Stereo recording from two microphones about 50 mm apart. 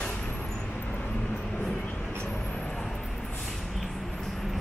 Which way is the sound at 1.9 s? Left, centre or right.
Left.